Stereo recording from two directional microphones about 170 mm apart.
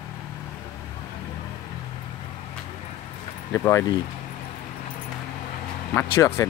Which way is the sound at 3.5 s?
15° left (ahead or behind).